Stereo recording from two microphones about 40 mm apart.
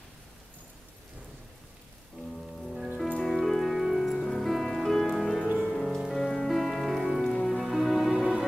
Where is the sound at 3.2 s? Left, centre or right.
Centre.